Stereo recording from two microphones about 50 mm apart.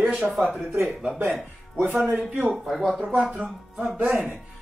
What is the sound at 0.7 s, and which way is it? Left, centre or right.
Speech, right.